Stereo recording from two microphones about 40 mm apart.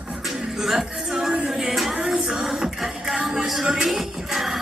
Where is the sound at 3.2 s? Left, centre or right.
Centre.